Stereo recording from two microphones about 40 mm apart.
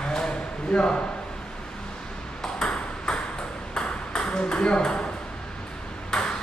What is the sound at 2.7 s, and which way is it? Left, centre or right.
Ping, left.